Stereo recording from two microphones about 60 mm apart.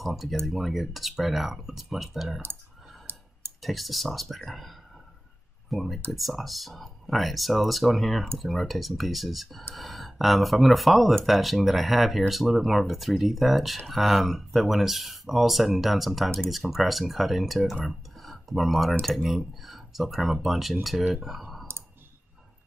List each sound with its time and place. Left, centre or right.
0.0 s speech: centre
3.1 s clicking: right
3.6 s speech: centre